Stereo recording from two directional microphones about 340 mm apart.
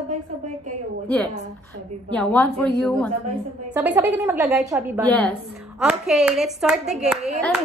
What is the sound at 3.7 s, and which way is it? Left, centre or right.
Speech, centre.